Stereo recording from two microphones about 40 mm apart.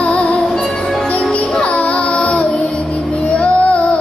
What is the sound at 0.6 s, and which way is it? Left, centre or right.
Music, centre.